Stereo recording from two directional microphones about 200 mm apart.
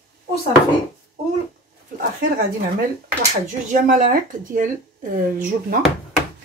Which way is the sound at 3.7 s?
40° right (ahead or behind).